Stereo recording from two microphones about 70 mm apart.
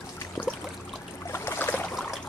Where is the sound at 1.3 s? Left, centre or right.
Left.